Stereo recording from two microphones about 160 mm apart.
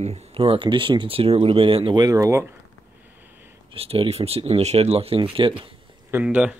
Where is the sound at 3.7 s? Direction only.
35° right (ahead or behind).